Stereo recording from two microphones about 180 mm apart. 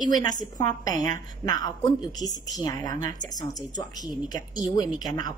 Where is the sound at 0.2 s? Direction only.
20° left (ahead or behind).